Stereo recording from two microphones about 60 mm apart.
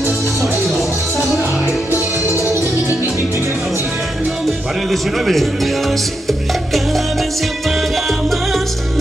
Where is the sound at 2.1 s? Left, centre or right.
Right.